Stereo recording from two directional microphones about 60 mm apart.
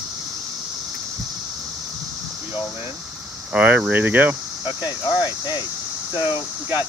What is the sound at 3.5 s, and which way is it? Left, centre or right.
Speech, right.